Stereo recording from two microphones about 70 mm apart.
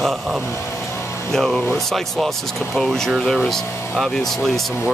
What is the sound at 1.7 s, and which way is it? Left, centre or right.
Speech, centre.